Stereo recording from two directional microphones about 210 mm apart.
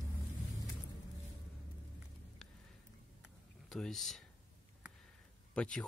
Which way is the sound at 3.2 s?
Centre (ahead or behind).